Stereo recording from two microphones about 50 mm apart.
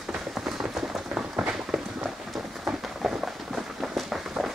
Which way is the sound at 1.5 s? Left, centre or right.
Centre.